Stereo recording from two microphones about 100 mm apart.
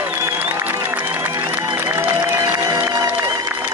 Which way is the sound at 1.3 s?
20° right (ahead or behind).